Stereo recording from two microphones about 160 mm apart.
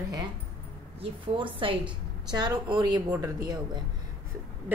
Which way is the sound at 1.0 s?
35° right (ahead or behind).